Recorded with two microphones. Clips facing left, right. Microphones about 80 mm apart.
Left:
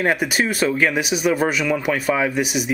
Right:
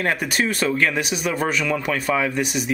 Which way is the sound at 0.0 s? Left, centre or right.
Centre.